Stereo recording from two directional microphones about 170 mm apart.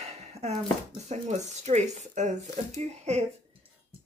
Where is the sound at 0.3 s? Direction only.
40° right (ahead or behind).